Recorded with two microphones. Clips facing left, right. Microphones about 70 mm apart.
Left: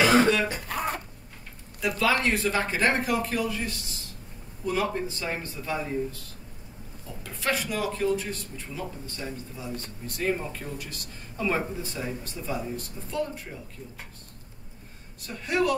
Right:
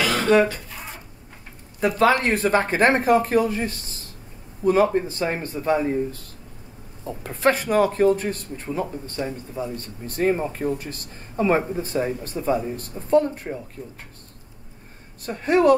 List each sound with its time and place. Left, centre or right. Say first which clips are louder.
0.0 s cough: left 4 dB; left
0.7 s a sound: left 8 dB; left
1.8 s speech: right 7 dB; right
7.1 s speech: right 9 dB; right
15.2 s speech: right 8 dB; right